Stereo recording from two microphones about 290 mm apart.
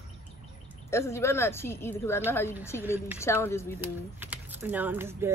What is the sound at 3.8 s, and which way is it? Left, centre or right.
Speech, centre.